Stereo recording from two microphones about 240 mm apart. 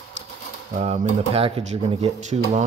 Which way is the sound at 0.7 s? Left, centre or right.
Right.